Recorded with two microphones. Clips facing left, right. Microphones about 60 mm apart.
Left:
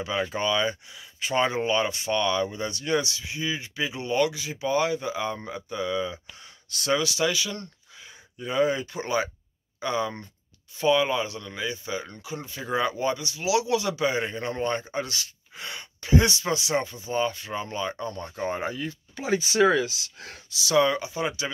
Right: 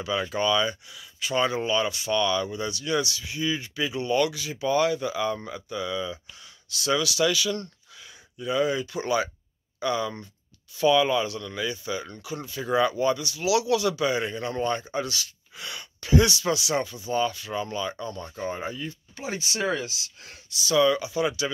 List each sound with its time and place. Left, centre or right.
0.0 s speech: left
6.7 s speech: left
7.0 s speech: left
8.4 s speech: left
20.2 s speech: left
20.8 s speech: left